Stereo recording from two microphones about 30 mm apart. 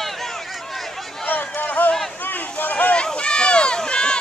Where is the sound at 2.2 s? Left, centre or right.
Left.